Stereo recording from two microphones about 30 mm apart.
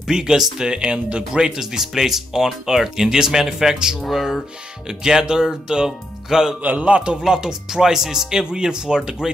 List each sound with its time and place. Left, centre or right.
0.1 s speech: right
1.5 s speech: centre
4.1 s speech: centre
4.8 s speech: centre
6.8 s speech: right
7.2 s speech: right
8.5 s speech: right